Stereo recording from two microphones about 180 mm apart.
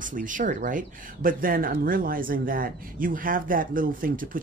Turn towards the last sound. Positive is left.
turn(degrees=-50)  # may be behind; listen again after turning